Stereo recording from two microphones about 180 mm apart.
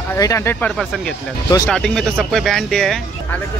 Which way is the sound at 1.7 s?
5° left (ahead or behind).